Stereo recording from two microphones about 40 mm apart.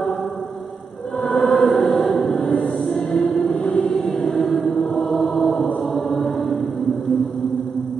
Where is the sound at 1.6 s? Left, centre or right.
Centre.